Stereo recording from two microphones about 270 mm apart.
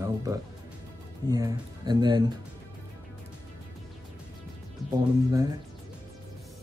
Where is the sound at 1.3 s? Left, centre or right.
Centre.